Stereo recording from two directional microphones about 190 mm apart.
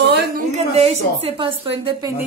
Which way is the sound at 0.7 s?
30° right (ahead or behind).